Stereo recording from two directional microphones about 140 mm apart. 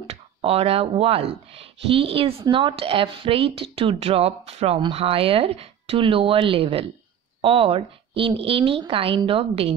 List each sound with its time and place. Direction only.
0.0 s speech: 40° right (ahead or behind)